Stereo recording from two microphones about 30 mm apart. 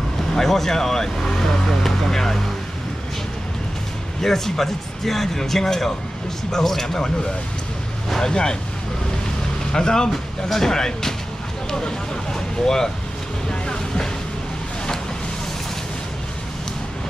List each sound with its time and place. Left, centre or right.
0.3 s speech: centre
4.2 s speech: centre
8.2 s speech: left
9.7 s speech: left
12.6 s speech: centre
13.5 s vehicle: left